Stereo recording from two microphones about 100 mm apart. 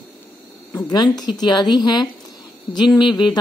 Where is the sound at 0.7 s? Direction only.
45° left (ahead or behind).